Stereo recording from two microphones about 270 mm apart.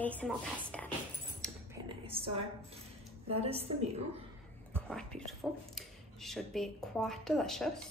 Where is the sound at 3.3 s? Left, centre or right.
Right.